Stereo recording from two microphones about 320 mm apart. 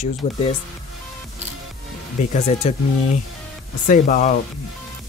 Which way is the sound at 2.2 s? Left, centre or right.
Left.